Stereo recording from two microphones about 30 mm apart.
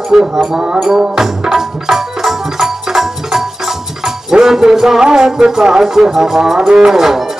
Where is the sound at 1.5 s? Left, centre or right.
Centre.